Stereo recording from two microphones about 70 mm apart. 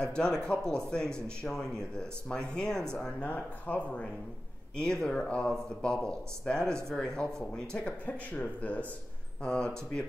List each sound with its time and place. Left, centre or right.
0.0 s speech: centre
3.3 s speech: left